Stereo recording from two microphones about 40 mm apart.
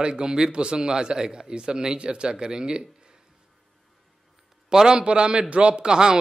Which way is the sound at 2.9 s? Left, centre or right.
Centre.